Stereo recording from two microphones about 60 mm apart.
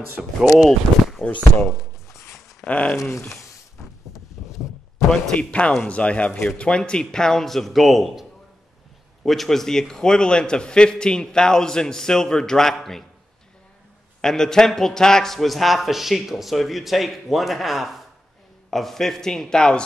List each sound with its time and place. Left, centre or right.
0.2 s speech: centre
0.7 s speech: centre
2.6 s speech: left
4.4 s a sound: centre
4.9 s a man's voice: centre
5.4 s a man's voice: centre
14.2 s a man's voice: centre